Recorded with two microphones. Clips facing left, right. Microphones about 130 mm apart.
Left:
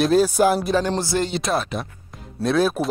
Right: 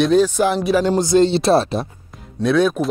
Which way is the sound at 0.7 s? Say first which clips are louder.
Right 6 dB; 15° right (ahead or behind).